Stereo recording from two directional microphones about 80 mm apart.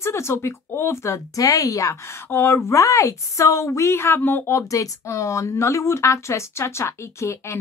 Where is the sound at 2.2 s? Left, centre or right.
Left.